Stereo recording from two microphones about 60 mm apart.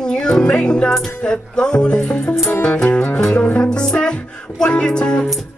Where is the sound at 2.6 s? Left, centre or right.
Left.